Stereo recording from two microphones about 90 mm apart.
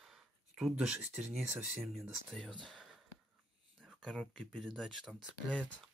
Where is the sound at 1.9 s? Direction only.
5° left (ahead or behind).